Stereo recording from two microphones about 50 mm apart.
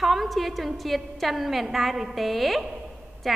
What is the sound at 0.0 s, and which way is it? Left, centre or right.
A woman's voice, centre.